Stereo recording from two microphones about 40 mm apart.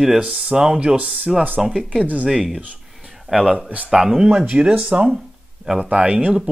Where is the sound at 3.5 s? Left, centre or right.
Right.